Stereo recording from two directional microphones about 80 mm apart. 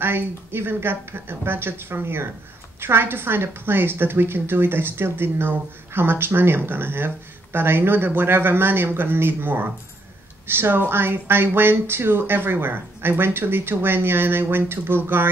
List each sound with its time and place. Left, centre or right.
0.0 s speech: right